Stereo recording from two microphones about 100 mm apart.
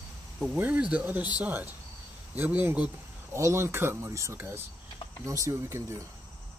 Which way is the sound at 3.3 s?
30° right (ahead or behind).